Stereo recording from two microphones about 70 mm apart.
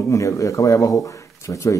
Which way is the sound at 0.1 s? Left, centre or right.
Left.